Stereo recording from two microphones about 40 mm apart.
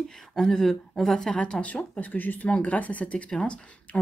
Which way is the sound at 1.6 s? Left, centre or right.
Left.